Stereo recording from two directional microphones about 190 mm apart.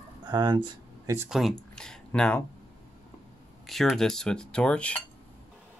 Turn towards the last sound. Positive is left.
turn(degrees=5)  # may be behind; listen again after turning